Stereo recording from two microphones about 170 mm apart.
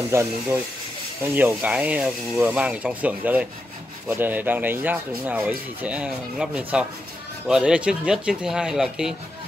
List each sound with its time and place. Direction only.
0.1 s speech: 15° right (ahead or behind)